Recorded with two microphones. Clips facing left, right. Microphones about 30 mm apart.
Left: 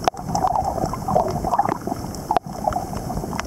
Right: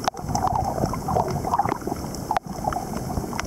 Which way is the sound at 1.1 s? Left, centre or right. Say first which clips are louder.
Left 4 dB; centre.